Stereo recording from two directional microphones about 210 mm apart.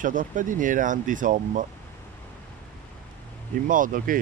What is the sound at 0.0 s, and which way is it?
Speech, 40° right (ahead or behind).